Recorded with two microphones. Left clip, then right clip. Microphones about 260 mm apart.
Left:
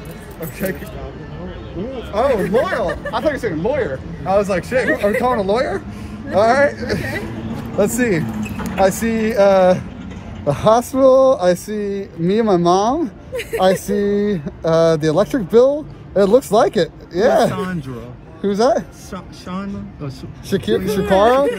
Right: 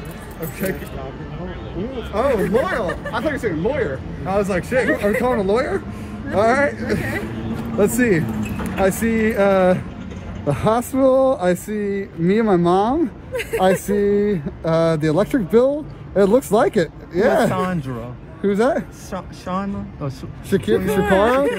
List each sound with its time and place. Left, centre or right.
0.4 s speech: centre
2.1 s speech: centre
13.3 s speech: centre
13.7 s speech: centre
19.1 s speech: right
20.4 s speech: centre